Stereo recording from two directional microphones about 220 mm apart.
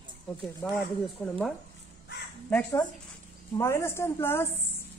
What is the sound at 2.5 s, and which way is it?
Speech, 5° left (ahead or behind).